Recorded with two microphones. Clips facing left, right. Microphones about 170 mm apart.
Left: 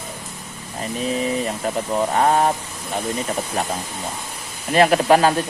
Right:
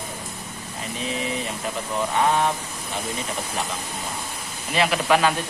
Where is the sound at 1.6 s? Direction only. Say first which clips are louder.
Left 5 dB; 45° left (ahead or behind).